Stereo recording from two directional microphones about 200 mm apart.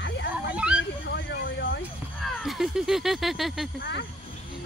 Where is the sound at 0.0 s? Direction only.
60° left (ahead or behind).